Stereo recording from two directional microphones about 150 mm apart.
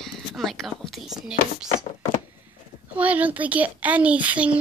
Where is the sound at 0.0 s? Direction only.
Centre (ahead or behind).